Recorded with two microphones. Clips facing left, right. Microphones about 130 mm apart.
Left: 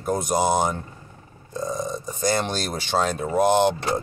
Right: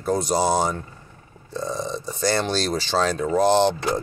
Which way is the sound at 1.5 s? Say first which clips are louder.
Even; 45° left (ahead or behind).